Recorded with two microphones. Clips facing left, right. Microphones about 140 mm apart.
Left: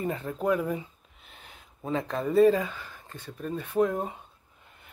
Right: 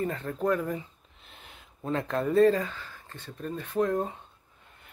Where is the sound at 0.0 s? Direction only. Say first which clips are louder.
Even; 10° left (ahead or behind).